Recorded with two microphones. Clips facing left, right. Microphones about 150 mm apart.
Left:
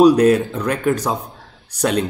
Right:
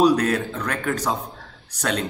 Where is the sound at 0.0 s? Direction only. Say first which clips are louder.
Left 7 dB; 20° left (ahead or behind).